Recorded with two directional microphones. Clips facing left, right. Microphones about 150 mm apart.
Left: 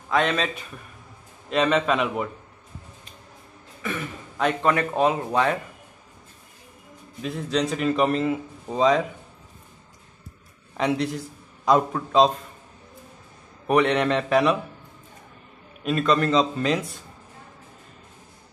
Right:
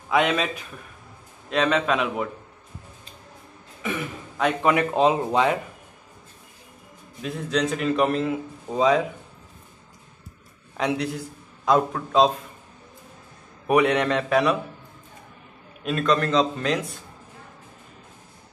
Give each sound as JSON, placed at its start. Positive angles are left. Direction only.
{"t": 0.1, "sound": "a man's voice", "side_deg": -10}
{"t": 4.4, "sound": "a man's voice", "side_deg": -5}
{"t": 4.9, "sound": "speech", "side_deg": -20}
{"t": 7.2, "sound": "a man's voice", "side_deg": 0}
{"t": 10.8, "sound": "a man's voice", "side_deg": 0}
{"t": 13.7, "sound": "a man's voice", "side_deg": -5}
{"t": 15.8, "sound": "a man's voice", "side_deg": 0}